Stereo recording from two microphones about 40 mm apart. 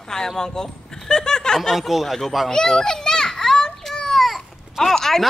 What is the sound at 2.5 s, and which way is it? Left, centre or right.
Children playing, centre.